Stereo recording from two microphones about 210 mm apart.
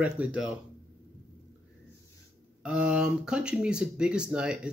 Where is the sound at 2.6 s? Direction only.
5° right (ahead or behind).